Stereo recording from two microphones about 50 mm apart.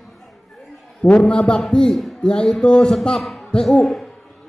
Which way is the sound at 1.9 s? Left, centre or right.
Centre.